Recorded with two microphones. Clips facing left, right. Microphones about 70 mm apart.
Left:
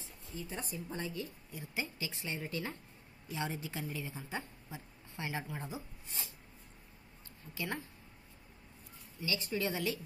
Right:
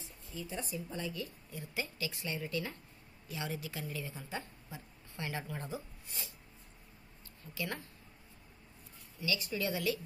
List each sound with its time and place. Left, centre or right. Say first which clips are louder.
0.4 s a woman's voice: right 2 dB; left
7.5 s a woman's voice: even; left
9.2 s a woman's voice: even; left